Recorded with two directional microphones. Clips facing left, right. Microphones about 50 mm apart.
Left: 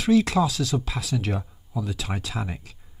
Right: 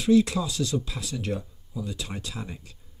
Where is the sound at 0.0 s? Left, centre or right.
Left.